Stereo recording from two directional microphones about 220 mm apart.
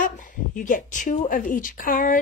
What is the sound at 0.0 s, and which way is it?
A woman's voice, 35° left (ahead or behind).